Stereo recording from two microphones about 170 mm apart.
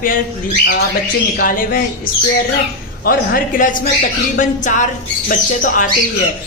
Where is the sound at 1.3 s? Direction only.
55° left (ahead or behind).